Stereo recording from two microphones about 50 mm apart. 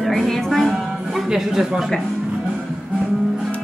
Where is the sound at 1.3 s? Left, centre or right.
Centre.